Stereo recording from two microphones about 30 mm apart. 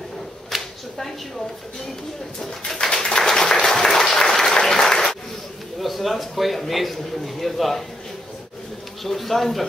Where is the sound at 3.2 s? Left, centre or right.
Centre.